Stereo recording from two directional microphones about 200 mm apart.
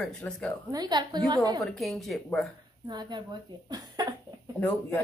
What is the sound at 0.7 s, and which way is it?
Speech, 20° right (ahead or behind).